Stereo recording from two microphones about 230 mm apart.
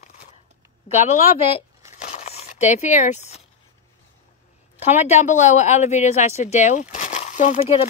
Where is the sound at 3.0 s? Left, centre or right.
Left.